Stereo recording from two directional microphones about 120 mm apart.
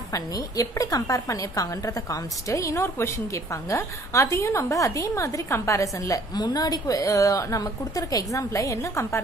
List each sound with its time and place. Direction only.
0.1 s a woman's voice: 30° left (ahead or behind)